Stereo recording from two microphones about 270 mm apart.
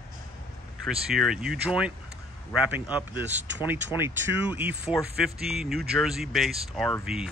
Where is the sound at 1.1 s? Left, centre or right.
Centre.